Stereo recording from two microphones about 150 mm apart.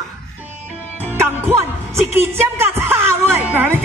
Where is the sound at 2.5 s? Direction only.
15° right (ahead or behind).